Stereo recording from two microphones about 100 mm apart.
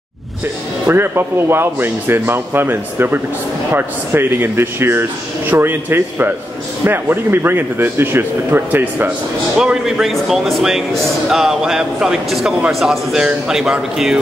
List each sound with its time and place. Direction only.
0.8 s speech: 20° right (ahead or behind)
9.6 s a man's voice: 5° right (ahead or behind)